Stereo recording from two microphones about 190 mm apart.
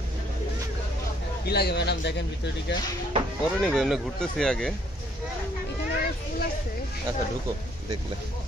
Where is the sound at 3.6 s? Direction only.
Centre (ahead or behind).